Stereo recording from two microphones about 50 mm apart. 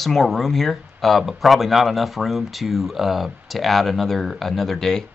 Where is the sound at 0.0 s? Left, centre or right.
Centre.